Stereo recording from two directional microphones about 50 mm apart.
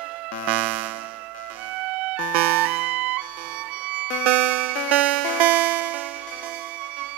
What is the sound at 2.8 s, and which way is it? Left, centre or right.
Music, right.